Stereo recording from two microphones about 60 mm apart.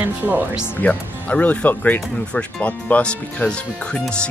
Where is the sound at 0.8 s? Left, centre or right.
Left.